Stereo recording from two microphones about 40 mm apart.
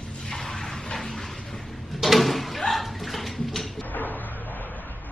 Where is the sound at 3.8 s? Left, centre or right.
Left.